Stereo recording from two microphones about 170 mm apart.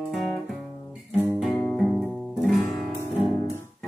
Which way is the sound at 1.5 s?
5° left (ahead or behind).